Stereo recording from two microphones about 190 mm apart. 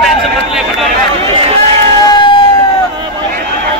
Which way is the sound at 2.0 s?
25° left (ahead or behind).